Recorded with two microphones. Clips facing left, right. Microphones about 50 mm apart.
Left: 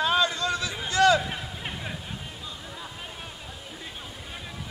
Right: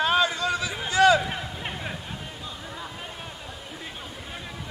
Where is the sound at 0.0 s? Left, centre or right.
Right.